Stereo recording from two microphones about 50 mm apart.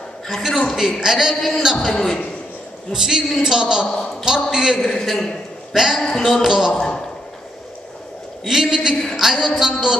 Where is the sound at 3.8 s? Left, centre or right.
Centre.